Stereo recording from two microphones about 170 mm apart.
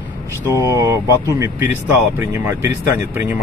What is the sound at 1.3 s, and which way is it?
Speech, 15° right (ahead or behind).